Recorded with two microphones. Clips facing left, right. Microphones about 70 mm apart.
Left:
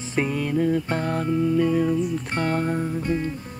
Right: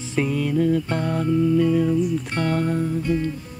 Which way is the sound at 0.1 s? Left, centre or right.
Centre.